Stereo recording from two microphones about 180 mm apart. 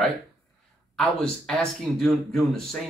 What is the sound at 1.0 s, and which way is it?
Speech, centre (ahead or behind).